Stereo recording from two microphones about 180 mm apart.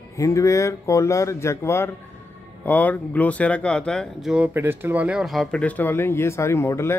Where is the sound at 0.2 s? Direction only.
15° left (ahead or behind).